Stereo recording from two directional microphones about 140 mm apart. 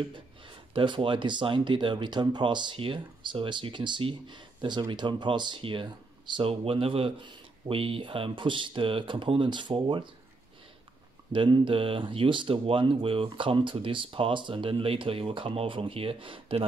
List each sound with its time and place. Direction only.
0.7 s speech: 35° right (ahead or behind)
11.3 s speech: 35° right (ahead or behind)